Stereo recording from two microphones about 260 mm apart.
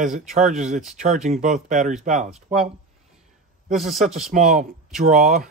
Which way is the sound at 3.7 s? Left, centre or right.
Centre.